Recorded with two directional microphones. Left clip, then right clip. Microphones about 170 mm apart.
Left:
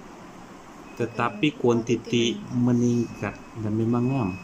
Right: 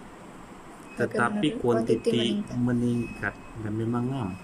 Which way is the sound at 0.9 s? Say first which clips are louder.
Right 1 dB; 15° left (ahead or behind).